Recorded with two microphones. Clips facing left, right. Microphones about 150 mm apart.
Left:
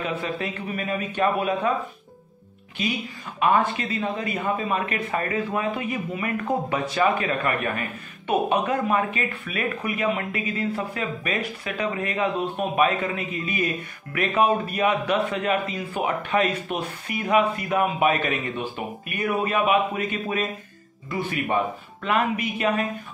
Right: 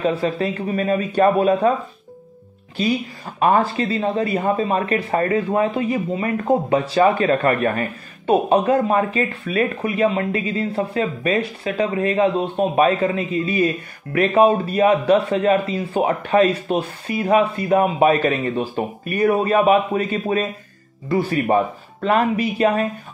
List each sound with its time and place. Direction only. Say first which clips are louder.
0.0 s a man's voice: right 8 dB; 30° right (ahead or behind)
2.8 s a man's voice: right 7 dB; 35° right (ahead or behind)